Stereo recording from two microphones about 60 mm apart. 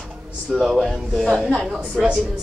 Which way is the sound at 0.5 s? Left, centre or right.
Centre.